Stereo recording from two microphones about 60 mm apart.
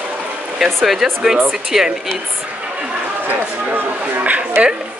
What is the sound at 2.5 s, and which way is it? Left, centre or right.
Chatter, right.